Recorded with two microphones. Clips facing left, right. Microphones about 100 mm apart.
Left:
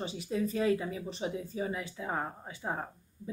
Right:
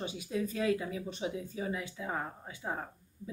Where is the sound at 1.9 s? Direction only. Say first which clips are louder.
Left 2 dB; 15° left (ahead or behind).